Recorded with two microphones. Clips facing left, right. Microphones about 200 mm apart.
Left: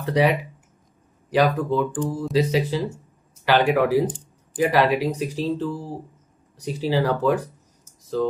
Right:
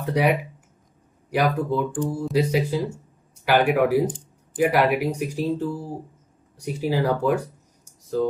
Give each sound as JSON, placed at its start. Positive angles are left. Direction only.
{"t": 0.1, "sound": "speech", "side_deg": -10}
{"t": 1.4, "sound": "speech", "side_deg": -15}